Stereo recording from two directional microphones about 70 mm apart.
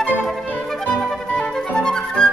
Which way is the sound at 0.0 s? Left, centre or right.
Centre.